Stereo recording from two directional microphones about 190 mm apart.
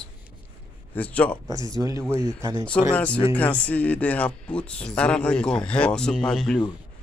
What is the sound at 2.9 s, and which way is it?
Speech, 5° left (ahead or behind).